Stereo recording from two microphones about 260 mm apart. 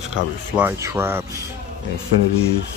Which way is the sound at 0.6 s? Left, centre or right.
Centre.